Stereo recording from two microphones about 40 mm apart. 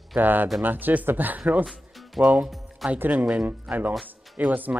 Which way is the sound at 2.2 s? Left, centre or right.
Centre.